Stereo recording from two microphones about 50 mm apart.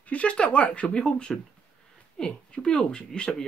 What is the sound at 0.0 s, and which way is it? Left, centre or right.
Speech, left.